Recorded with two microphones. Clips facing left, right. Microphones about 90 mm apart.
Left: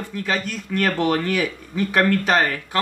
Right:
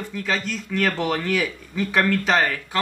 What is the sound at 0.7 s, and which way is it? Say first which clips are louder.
Speech: left 3 dB; 10° left (ahead or behind).